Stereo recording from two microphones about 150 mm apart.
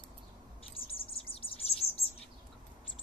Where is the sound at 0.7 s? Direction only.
40° left (ahead or behind).